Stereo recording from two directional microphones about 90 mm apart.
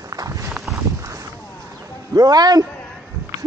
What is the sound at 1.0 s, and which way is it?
Boat, 35° right (ahead or behind).